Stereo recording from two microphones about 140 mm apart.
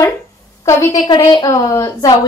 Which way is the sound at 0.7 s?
20° left (ahead or behind).